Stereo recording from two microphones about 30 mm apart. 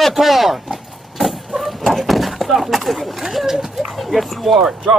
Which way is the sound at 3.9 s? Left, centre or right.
Centre.